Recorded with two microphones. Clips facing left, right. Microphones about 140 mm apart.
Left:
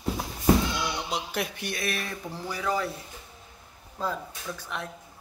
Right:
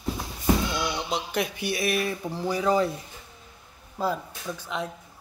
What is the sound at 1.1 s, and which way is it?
Speech, centre (ahead or behind).